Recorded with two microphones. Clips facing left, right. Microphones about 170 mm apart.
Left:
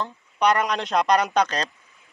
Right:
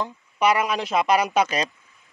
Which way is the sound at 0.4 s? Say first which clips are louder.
Even; 5° right (ahead or behind).